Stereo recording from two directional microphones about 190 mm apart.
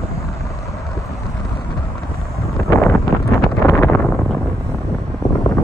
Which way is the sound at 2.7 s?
15° left (ahead or behind).